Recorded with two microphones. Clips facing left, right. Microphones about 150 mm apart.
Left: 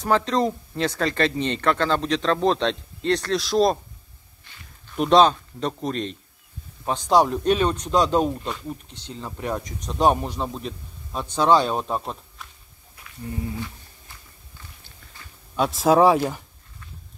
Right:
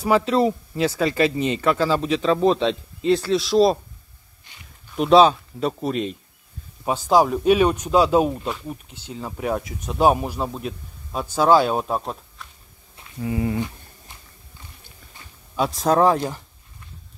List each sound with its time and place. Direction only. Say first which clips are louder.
0.0 s speech: right 3 dB; 10° right (ahead or behind)
4.5 s a sound: even; 15° right (ahead or behind)
4.9 s speech: right 2 dB; 5° right (ahead or behind)
13.2 s speech: right 7 dB; 85° right
15.5 s speech: left 1 dB; centre (ahead or behind)